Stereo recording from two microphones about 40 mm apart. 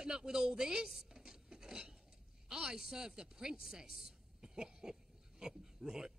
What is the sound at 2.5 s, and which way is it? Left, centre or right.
A woman's voice, centre.